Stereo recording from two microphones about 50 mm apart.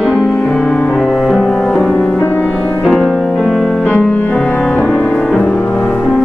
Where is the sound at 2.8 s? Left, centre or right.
Centre.